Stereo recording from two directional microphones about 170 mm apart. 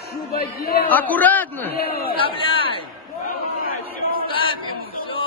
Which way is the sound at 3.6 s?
60° left (ahead or behind).